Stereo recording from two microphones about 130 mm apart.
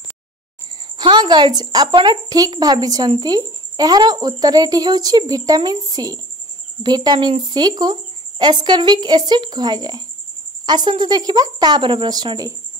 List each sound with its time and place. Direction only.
0.9 s speech: 35° right (ahead or behind)